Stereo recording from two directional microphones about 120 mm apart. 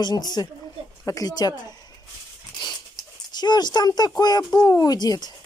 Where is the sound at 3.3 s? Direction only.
35° left (ahead or behind).